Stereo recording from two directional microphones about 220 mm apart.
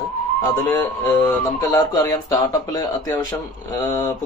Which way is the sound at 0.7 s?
15° left (ahead or behind).